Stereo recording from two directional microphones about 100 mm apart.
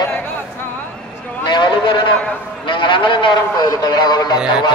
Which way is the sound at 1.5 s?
50° left (ahead or behind).